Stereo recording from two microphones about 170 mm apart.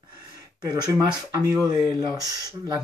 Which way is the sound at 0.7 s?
20° right (ahead or behind).